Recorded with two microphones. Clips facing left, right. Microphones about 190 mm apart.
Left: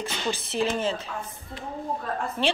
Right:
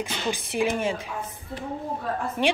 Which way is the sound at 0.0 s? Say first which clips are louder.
Right 1 dB; 15° right (ahead or behind).